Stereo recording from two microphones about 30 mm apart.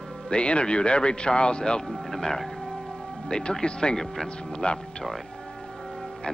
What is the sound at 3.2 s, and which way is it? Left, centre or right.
Speech, left.